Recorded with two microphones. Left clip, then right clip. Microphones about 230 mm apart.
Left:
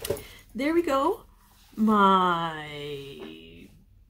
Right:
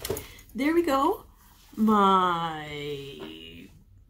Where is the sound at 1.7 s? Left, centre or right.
Centre.